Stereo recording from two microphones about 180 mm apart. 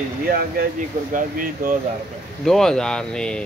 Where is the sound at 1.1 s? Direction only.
50° right (ahead or behind).